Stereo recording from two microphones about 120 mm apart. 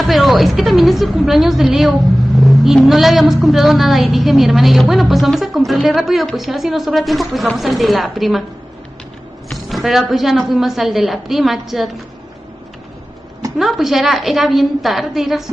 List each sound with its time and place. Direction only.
0.0 s a woman's voice: centre (ahead or behind)
9.5 s a woman's voice: centre (ahead or behind)
13.6 s a woman's voice: centre (ahead or behind)